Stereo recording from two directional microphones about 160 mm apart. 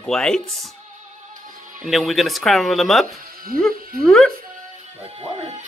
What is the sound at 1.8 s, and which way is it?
Speech, centre (ahead or behind).